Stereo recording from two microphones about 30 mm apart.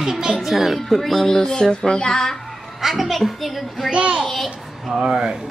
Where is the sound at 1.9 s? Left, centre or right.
Left.